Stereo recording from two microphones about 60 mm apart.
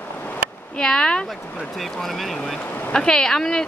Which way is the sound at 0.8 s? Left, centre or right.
Centre.